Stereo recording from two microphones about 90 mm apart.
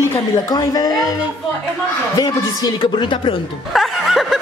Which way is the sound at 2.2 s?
50° left (ahead or behind).